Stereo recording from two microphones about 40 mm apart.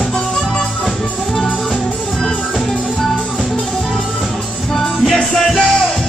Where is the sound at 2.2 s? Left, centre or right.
Centre.